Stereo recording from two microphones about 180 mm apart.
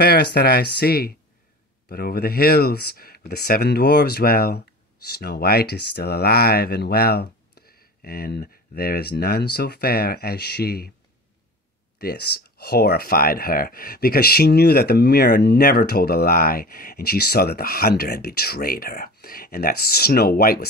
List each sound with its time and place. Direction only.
0.0 s speech: 60° left (ahead or behind)
12.0 s speech: 60° left (ahead or behind)